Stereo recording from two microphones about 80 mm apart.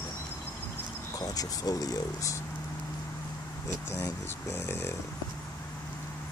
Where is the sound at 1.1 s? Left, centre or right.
Left.